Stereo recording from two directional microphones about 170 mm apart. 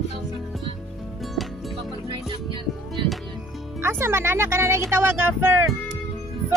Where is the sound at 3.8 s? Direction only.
15° right (ahead or behind).